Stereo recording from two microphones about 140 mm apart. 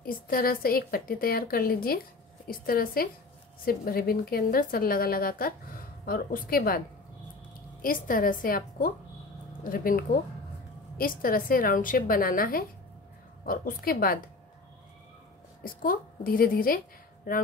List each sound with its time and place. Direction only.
0.0 s a woman's voice: 90° left
7.8 s a woman's voice: 90° left
15.6 s a woman's voice: 90° left